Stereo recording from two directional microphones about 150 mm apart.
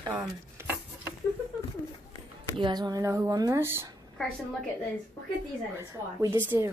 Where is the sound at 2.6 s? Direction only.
25° right (ahead or behind).